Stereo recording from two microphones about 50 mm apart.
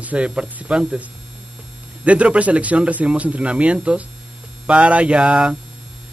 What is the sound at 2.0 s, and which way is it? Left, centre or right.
A man's voice, right.